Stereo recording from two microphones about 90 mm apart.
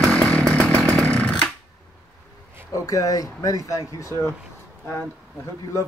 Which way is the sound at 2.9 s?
40° left (ahead or behind).